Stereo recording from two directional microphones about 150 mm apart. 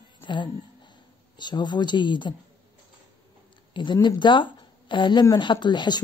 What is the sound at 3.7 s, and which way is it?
Speech, 30° left (ahead or behind).